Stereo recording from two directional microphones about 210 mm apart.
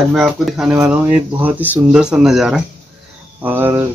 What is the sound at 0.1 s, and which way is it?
Speech, centre (ahead or behind).